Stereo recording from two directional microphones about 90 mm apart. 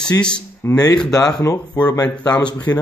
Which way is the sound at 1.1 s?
45° left (ahead or behind).